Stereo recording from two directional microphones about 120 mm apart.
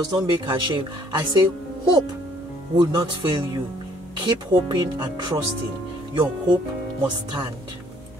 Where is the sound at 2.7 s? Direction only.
35° right (ahead or behind).